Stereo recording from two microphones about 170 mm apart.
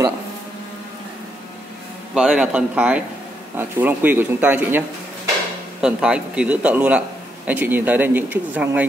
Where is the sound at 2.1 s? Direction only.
5° right (ahead or behind).